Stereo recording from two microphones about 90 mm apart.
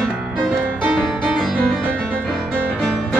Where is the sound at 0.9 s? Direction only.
Centre (ahead or behind).